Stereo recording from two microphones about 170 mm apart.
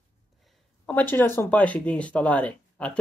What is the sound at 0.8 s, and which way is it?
Speech, 10° left (ahead or behind).